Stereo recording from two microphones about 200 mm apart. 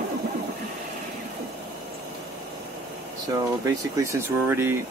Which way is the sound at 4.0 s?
15° right (ahead or behind).